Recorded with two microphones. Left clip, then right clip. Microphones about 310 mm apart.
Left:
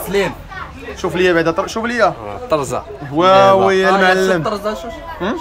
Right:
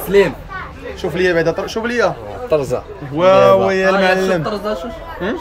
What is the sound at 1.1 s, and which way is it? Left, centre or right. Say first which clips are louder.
Speech: left 1 dB; centre.